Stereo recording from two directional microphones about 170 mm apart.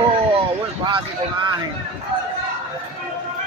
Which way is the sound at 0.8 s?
30° right (ahead or behind).